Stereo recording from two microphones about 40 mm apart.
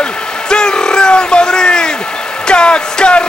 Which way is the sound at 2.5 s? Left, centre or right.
Left.